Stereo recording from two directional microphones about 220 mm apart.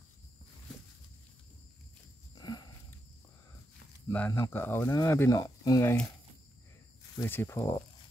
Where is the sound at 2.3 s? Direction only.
20° left (ahead or behind).